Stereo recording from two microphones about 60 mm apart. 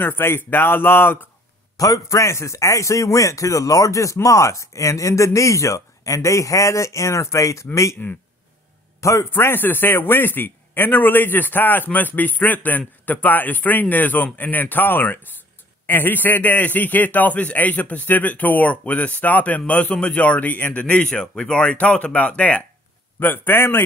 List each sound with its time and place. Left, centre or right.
0.0 s a man's voice: left
1.8 s speech: left
9.0 s speech: left
9.3 s a man's voice: left
23.1 s a man's voice: left